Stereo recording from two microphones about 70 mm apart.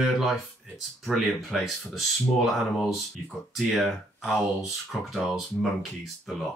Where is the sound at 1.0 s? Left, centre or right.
Centre.